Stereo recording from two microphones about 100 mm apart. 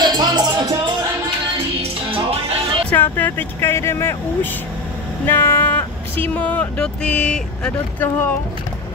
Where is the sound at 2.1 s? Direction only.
80° right.